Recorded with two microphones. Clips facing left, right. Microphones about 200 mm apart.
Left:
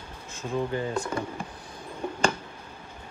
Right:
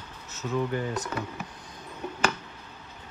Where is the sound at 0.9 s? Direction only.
10° left (ahead or behind).